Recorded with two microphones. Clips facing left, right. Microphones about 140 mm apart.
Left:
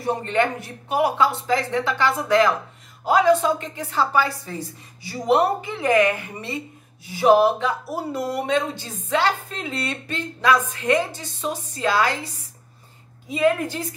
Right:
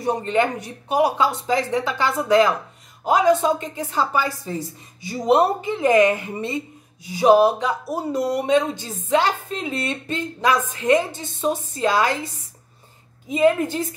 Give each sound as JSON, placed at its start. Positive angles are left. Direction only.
{"t": 0.0, "sound": "speech", "side_deg": -20}
{"t": 13.3, "sound": "speech", "side_deg": -25}